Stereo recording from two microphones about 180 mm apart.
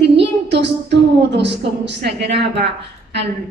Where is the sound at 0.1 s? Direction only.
70° right (ahead or behind).